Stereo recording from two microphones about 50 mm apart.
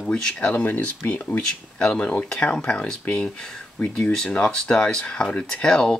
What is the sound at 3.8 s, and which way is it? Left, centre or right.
Speech, left.